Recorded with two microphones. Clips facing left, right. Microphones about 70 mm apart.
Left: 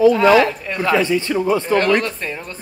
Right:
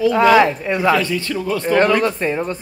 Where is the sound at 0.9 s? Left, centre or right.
Centre.